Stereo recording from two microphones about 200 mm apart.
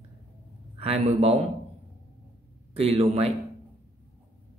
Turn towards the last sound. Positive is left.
turn(degrees=-30)  # may be behind; listen again after turning